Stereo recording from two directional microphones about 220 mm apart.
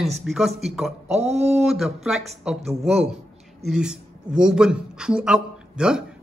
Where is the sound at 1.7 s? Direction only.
Centre (ahead or behind).